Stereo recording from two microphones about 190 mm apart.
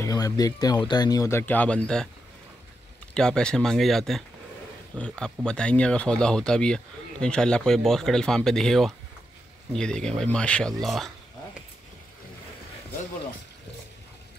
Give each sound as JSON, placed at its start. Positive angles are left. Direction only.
{"t": 0.0, "sound": "speech", "side_deg": 20}
{"t": 3.2, "sound": "speech", "side_deg": 5}